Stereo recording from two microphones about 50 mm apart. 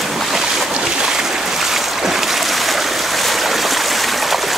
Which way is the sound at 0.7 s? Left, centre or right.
Centre.